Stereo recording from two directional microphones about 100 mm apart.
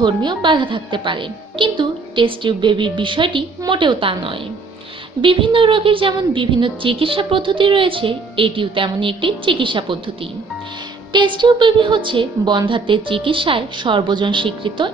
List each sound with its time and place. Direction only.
0.0 s a woman's voice: 50° right (ahead or behind)
11.1 s a woman's voice: 50° right (ahead or behind)